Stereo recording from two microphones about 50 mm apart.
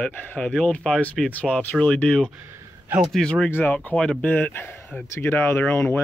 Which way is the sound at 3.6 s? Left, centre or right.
Left.